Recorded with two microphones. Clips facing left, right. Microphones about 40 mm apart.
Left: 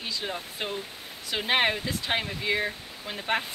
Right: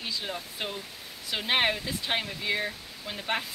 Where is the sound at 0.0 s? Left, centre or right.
Centre.